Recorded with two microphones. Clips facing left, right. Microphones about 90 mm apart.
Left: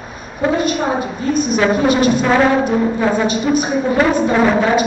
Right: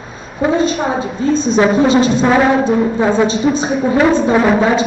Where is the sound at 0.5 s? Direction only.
25° right (ahead or behind).